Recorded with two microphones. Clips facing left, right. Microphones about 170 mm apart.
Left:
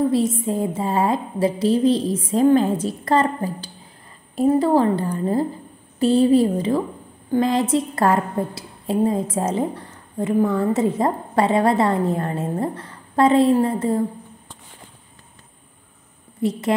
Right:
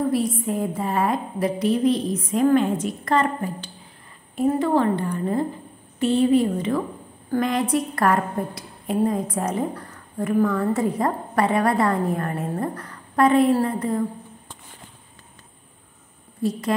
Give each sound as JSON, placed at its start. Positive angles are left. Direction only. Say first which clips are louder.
{"t": 0.5, "sound": "a woman's voice", "louder": "left 2 dB", "side_deg": 30}
{"t": 16.4, "sound": "a woman's voice", "louder": "left 2 dB", "side_deg": 25}